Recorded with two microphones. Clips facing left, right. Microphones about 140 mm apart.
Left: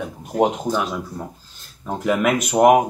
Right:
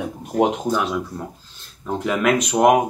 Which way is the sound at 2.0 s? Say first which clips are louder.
Left 1 dB; 5° left (ahead or behind).